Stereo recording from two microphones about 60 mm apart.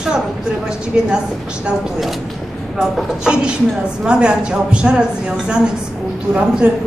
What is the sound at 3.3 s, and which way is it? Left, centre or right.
Speech, centre.